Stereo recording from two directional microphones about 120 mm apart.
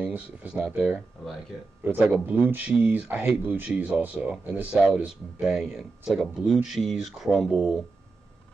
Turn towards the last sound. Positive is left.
turn(degrees=0)  # may be behind; listen again after turning